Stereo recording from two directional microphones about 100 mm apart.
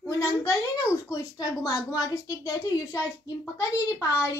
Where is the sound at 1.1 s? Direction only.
35° left (ahead or behind).